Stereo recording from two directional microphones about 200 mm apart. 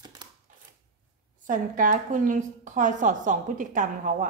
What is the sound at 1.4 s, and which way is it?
A woman's voice, 40° right (ahead or behind).